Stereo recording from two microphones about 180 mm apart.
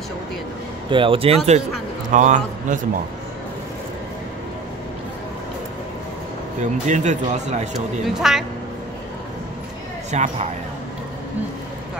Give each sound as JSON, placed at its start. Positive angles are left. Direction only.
{"t": 0.8, "sound": "speech", "side_deg": -30}
{"t": 6.6, "sound": "speech", "side_deg": -40}
{"t": 8.1, "sound": "a woman's voice", "side_deg": 0}
{"t": 10.1, "sound": "speech", "side_deg": -40}